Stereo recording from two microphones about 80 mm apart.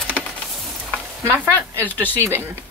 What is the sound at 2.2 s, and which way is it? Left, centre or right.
Speech, right.